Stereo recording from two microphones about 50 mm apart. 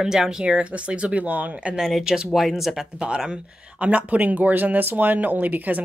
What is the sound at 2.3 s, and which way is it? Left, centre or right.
Speech, centre.